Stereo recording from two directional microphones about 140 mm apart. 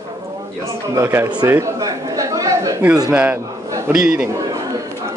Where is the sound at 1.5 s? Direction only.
20° right (ahead or behind).